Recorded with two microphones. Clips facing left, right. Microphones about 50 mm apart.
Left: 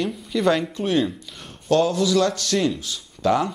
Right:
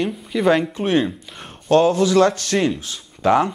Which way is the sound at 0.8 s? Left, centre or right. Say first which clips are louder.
Right 3 dB; right.